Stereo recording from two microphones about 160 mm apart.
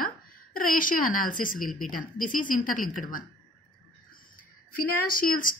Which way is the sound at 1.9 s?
60° left (ahead or behind).